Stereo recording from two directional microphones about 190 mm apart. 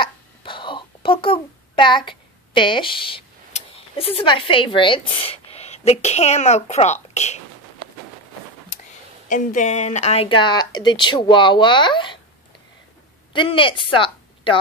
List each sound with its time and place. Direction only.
0.0 s a sound: 25° left (ahead or behind)
9.3 s speech: 40° left (ahead or behind); by 12.2 s 25° left (ahead or behind)
13.3 s a woman's voice: 25° left (ahead or behind)